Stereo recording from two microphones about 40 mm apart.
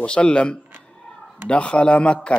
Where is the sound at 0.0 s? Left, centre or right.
Left.